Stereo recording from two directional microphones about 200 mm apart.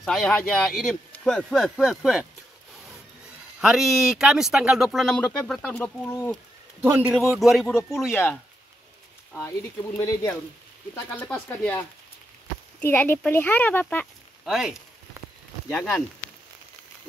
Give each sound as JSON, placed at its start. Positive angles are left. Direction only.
{"t": 0.0, "sound": "speech", "side_deg": 0}
{"t": 3.6, "sound": "speech", "side_deg": 0}
{"t": 6.8, "sound": "speech", "side_deg": -10}
{"t": 9.4, "sound": "speech", "side_deg": 10}
{"t": 12.8, "sound": "speech", "side_deg": 10}
{"t": 14.4, "sound": "speech", "side_deg": 0}